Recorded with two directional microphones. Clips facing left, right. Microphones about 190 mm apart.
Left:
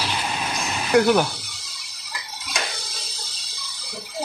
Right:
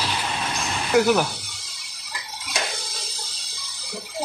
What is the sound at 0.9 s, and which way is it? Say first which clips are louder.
Speech: left 2 dB; 5° right (ahead or behind).